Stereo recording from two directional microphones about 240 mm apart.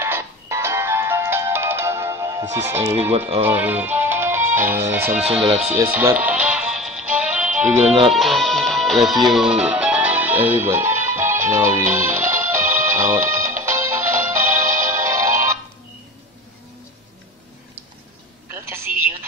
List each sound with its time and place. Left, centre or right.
0.0 s music: centre
2.5 s speech: centre
3.1 s speech: right
3.4 s music: centre
7.8 s speech: right
8.1 s music: centre
11.5 s speech: centre
12.6 s music: right
12.9 s speech: centre
13.2 s music: right
13.8 s music: centre
14.5 s music: right
15.0 s music: centre
18.5 s telephone: centre